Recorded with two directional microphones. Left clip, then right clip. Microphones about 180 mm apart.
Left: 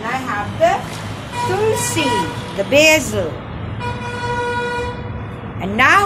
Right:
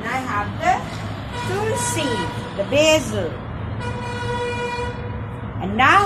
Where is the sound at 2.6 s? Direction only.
25° left (ahead or behind).